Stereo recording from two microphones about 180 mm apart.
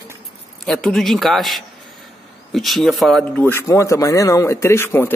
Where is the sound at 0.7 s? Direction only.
5° left (ahead or behind).